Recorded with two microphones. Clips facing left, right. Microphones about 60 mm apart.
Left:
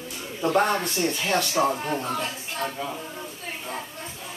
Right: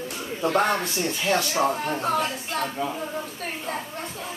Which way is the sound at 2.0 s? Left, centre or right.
Right.